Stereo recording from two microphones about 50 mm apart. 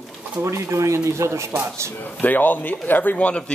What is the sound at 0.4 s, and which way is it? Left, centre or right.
Speech, right.